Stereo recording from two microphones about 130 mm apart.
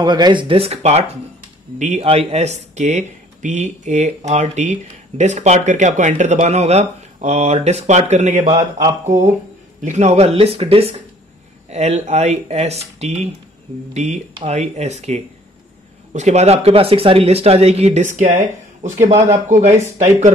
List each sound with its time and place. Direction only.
0.0 s speech: 35° right (ahead or behind); by 8.6 s 65° right (ahead or behind)
9.8 s speech: 65° right (ahead or behind); by 11.0 s 50° right (ahead or behind)
11.7 s speech: 60° right (ahead or behind)
18.8 s speech: 80° right
19.6 s speech: 65° right (ahead or behind)